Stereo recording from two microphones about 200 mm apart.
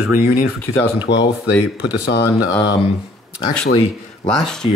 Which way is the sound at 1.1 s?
60° left (ahead or behind).